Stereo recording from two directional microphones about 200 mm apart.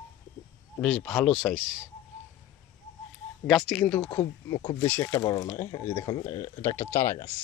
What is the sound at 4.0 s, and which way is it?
Speech, 30° left (ahead or behind).